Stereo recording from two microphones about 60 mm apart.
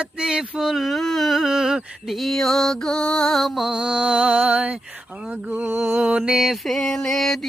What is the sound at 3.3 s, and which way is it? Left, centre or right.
Music, centre.